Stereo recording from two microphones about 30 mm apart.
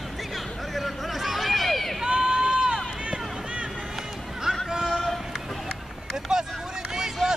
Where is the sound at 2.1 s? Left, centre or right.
Right.